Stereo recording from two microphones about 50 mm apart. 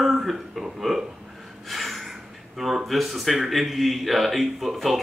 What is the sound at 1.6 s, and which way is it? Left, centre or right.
Gasp, centre.